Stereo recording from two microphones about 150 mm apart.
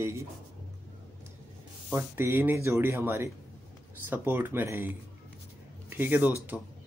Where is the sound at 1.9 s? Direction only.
15° right (ahead or behind).